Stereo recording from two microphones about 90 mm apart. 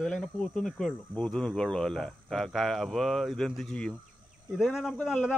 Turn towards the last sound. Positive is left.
turn(degrees=-5)  # may be behind; listen again after turning